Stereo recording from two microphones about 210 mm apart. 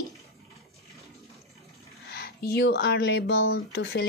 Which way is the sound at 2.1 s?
50° left (ahead or behind).